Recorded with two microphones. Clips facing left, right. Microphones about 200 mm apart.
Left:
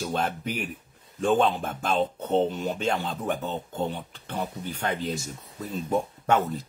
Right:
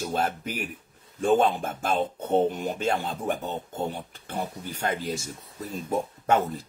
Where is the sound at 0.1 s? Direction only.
5° right (ahead or behind).